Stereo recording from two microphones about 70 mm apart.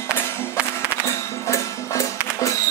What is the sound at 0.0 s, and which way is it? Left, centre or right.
Music, left.